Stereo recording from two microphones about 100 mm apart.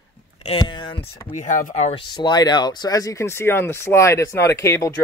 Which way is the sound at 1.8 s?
90° left.